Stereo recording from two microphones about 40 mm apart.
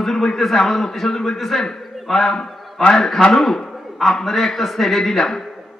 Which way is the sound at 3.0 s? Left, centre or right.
Centre.